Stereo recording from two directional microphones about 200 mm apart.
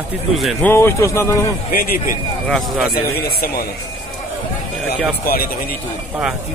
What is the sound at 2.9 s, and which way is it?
Speech, 50° left (ahead or behind).